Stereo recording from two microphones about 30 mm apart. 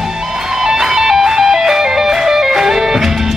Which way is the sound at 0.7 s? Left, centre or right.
Centre.